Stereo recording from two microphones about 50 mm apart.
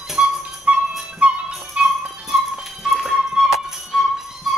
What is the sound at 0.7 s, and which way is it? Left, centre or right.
Dog, right.